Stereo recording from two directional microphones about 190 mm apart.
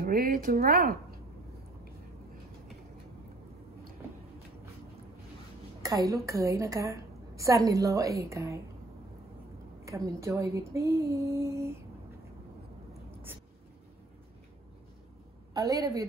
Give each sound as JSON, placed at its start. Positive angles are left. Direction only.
{"t": 0.0, "sound": "speech", "side_deg": -50}
{"t": 5.8, "sound": "a woman's voice", "side_deg": -20}
{"t": 9.8, "sound": "a woman's voice", "side_deg": -15}
{"t": 13.1, "sound": "a sound", "side_deg": -10}
{"t": 15.5, "sound": "a woman's voice", "side_deg": -20}